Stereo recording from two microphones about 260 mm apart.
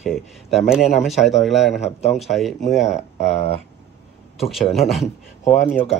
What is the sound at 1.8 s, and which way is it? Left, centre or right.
Speech, left.